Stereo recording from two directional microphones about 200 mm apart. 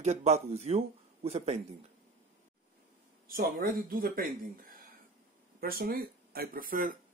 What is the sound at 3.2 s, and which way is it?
Speech, 45° right (ahead or behind).